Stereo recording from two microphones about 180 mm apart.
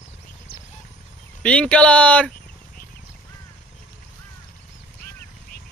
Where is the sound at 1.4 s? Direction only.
5° left (ahead or behind).